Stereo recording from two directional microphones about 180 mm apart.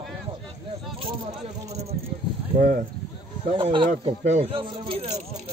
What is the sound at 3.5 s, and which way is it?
Speech, 30° right (ahead or behind).